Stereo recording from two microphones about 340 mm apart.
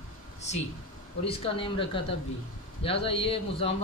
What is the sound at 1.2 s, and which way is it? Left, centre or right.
Speech, centre.